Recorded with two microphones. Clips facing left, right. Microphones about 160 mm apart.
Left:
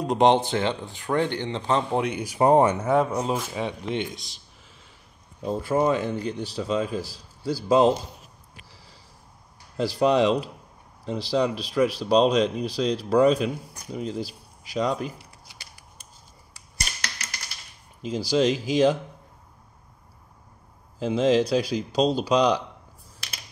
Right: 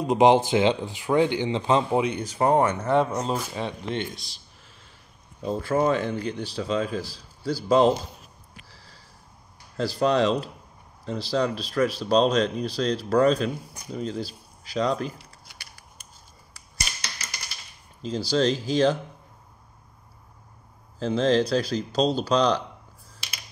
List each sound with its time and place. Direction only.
0.0 s speech: 5° right (ahead or behind)
2.0 s speech: centre (ahead or behind)
2.2 s speech: 15° left (ahead or behind)
5.4 s speech: 10° left (ahead or behind)
6.5 s speech: 5° left (ahead or behind)
8.6 s sniff: 15° left (ahead or behind)
9.8 s speech: 15° left (ahead or behind)
15.5 s scissors: 20° left (ahead or behind)
16.9 s typewriter: 45° left (ahead or behind)
18.0 s speech: 15° left (ahead or behind)
21.0 s speech: 10° left (ahead or behind)